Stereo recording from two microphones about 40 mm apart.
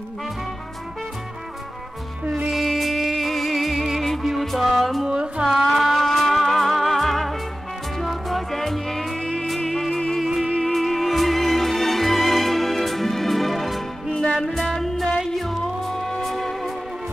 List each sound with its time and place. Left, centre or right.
2.5 s music: centre
5.0 s music: centre
5.6 s music: centre
9.2 s music: centre
10.5 s music: centre